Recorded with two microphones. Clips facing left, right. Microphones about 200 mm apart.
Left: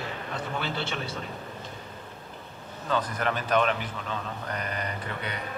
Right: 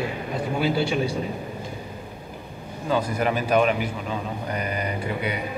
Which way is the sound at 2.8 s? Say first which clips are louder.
Right 5 dB; 10° right (ahead or behind).